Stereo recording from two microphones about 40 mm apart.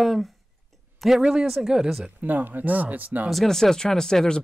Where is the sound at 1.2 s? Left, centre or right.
Centre.